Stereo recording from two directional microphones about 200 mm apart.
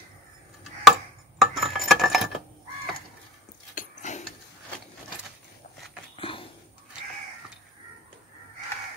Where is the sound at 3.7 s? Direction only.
35° left (ahead or behind).